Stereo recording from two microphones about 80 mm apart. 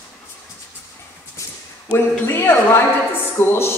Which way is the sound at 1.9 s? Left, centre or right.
Left.